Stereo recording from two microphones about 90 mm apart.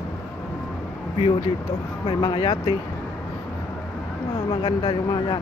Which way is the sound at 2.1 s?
60° left (ahead or behind).